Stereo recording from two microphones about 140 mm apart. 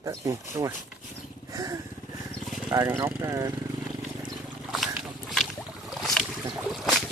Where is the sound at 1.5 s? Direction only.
25° right (ahead or behind).